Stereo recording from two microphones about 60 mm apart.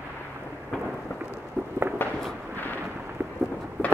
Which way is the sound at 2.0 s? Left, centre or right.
Left.